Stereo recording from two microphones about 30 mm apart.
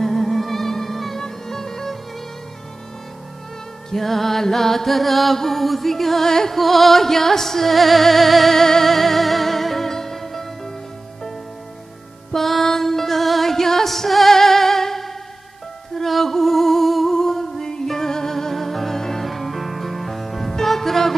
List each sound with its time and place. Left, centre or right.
0.0 s music: centre
3.9 s music: centre
12.3 s music: centre
19.2 s music: centre